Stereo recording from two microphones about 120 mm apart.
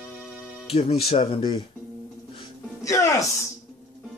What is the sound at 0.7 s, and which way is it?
Speech, 55° left (ahead or behind).